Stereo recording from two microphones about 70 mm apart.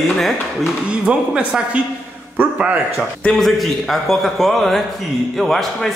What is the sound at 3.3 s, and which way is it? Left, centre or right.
A man's voice, centre.